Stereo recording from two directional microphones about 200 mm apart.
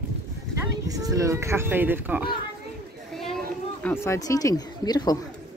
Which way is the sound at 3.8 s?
10° left (ahead or behind).